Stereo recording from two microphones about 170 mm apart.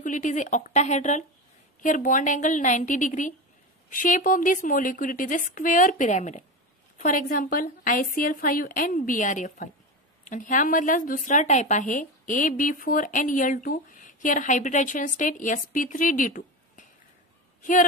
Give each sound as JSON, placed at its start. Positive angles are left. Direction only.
{"t": 0.0, "sound": "a woman's voice", "side_deg": 50}